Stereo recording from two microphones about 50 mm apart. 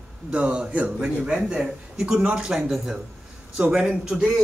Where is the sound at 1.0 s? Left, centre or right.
Centre.